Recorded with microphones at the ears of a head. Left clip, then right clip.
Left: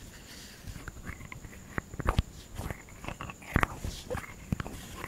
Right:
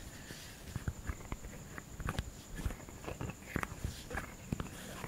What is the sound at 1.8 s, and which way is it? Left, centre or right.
Walk, left.